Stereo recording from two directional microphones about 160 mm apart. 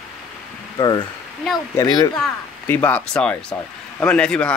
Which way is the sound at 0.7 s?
30° left (ahead or behind).